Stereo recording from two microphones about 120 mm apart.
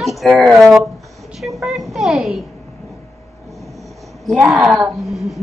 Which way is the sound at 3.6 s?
Centre (ahead or behind).